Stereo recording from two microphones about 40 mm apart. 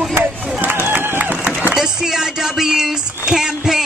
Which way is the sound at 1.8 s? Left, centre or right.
Centre.